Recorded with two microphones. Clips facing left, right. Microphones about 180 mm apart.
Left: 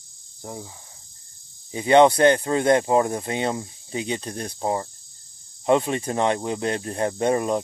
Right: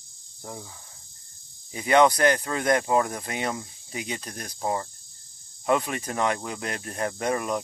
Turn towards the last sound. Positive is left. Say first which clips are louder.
# left 5 dB
turn(degrees=30)  # may be behind; listen again after turning